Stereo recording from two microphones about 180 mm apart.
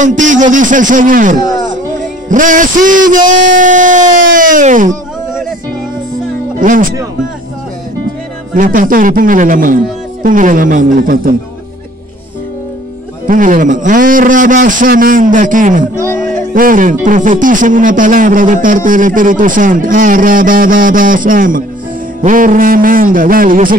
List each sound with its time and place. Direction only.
0.0 s a man's voice: 45° right (ahead or behind)
6.6 s a man's voice: 50° right (ahead or behind)
8.5 s a man's voice: 50° right (ahead or behind)
13.3 s a man's voice: 45° right (ahead or behind)